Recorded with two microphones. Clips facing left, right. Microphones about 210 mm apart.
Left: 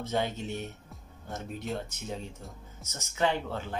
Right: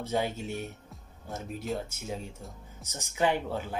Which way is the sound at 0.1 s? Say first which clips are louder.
Right 1 dB; 5° right (ahead or behind).